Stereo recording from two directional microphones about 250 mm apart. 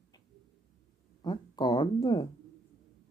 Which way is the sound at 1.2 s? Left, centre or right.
Centre.